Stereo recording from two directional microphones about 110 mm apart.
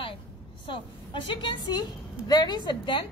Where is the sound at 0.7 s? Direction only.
50° left (ahead or behind).